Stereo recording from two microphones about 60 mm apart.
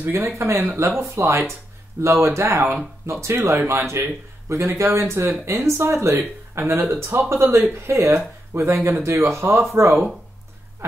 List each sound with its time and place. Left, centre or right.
0.0 s speech: right
3.3 s speech: right
8.7 s speech: right
9.0 s speech: right